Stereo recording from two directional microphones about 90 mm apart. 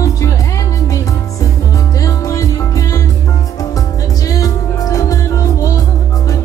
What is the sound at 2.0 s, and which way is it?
Music, 40° left (ahead or behind).